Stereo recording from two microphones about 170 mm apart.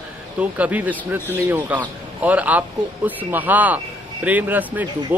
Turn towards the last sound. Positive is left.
turn(degrees=-10)  # may be behind; listen again after turning